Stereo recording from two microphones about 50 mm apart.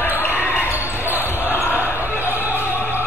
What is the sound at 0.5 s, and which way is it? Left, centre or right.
Basketball bounce, right.